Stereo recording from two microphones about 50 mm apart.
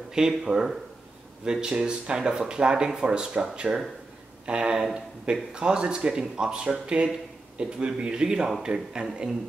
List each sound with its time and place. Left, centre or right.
0.2 s speech: centre